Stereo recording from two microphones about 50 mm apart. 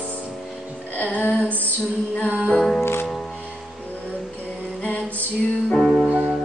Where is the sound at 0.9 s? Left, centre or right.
Left.